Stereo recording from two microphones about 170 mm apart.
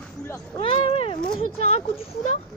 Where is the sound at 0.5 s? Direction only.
30° left (ahead or behind).